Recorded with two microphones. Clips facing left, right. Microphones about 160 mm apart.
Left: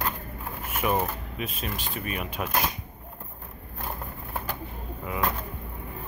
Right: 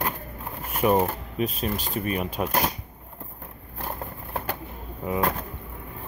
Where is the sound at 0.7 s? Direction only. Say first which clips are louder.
Right 5 dB; 35° right (ahead or behind).